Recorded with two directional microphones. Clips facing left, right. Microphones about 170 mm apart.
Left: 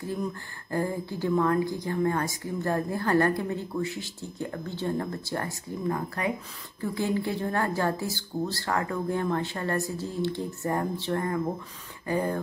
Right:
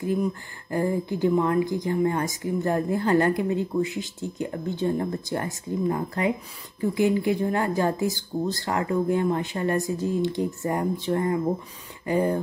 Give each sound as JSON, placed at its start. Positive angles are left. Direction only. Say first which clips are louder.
{"t": 0.0, "sound": "a woman's voice", "louder": "right 6 dB", "side_deg": -15}